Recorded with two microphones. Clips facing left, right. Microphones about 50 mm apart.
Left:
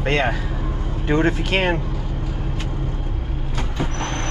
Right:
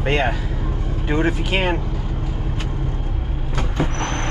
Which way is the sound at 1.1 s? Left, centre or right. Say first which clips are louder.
Left 2 dB; centre.